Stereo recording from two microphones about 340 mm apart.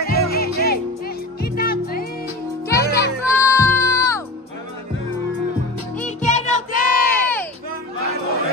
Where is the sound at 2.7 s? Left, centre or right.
Centre.